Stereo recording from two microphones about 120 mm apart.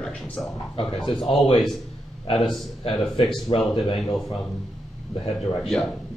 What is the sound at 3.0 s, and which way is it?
Speech, centre (ahead or behind).